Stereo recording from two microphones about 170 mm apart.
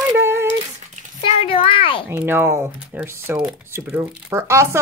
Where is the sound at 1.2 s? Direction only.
35° left (ahead or behind).